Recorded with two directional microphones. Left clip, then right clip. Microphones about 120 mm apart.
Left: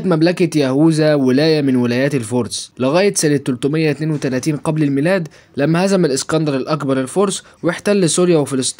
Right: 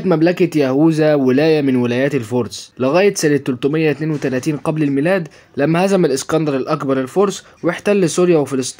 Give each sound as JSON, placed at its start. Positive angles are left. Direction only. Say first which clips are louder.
{"t": 0.1, "sound": "speech", "louder": "right 1 dB", "side_deg": 35}